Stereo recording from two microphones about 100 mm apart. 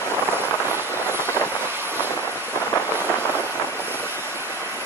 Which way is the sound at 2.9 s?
20° right (ahead or behind).